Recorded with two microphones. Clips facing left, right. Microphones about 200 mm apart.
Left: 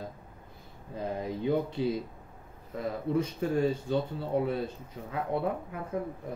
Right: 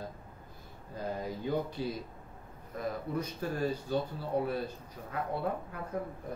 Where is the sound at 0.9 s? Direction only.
25° left (ahead or behind).